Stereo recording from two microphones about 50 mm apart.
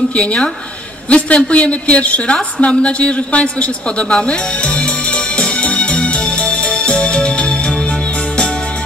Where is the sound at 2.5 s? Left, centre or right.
Left.